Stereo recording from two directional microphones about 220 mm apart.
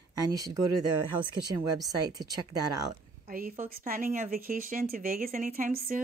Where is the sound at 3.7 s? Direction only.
40° right (ahead or behind).